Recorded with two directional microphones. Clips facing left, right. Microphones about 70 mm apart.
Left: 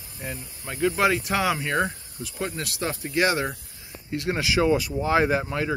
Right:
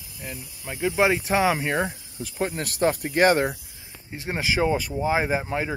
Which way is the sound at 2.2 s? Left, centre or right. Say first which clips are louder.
Right 3 dB; right.